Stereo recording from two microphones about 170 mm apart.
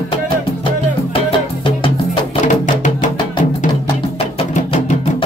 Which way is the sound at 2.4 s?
45° left (ahead or behind).